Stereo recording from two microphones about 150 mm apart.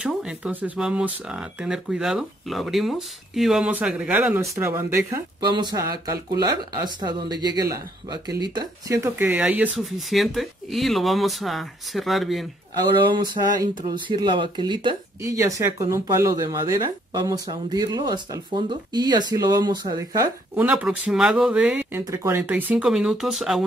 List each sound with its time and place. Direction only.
0.0 s speech: 5° right (ahead or behind)
13.0 s speech: 30° right (ahead or behind)
15.2 s speech: 20° right (ahead or behind)
20.5 s speech: 10° right (ahead or behind)
22.0 s speech: 20° right (ahead or behind); by 23.6 s centre (ahead or behind)